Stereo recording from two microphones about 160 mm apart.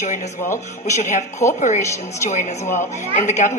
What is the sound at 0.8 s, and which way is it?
Speech, 50° left (ahead or behind).